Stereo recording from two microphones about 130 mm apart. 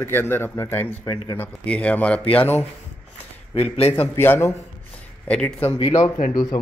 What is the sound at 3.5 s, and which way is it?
Speech, 50° left (ahead or behind).